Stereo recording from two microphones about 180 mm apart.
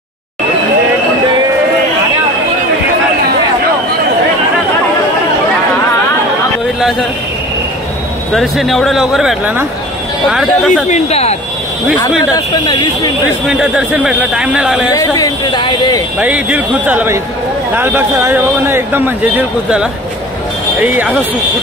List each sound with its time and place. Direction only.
6.8 s a sound: centre (ahead or behind)
8.3 s speech: centre (ahead or behind)
10.9 s speech: 35° left (ahead or behind)
12.4 s speech: 20° left (ahead or behind)
13.5 s speech: 5° right (ahead or behind)
14.9 s speech: 20° left (ahead or behind)
16.2 s a man's voice: 5° right (ahead or behind)